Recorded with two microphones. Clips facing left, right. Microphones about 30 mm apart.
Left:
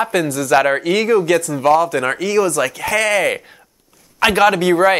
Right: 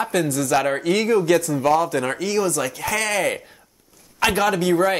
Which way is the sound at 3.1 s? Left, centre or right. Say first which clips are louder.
Left 5 dB; left.